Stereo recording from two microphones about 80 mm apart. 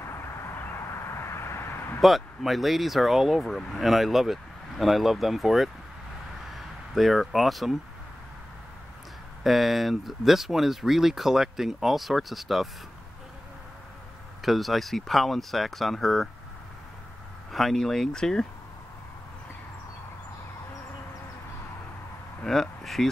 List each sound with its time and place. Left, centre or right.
0.0 s vehicle: left
2.0 s speech: centre
9.4 s speech: centre
14.4 s speech: centre
17.5 s speech: centre
22.4 s a sound: centre